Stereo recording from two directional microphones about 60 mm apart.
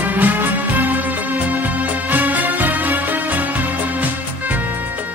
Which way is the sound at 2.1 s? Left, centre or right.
Right.